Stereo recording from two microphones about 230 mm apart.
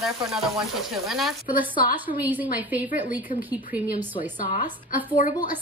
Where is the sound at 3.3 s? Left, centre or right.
Centre.